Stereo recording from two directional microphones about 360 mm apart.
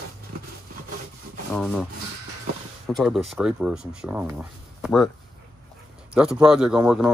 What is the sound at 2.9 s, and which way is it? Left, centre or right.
Speech, centre.